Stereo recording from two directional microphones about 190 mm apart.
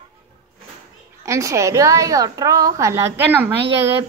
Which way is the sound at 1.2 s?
15° right (ahead or behind).